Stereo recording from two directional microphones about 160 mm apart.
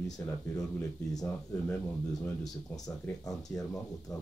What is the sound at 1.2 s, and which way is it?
Speech, 10° left (ahead or behind).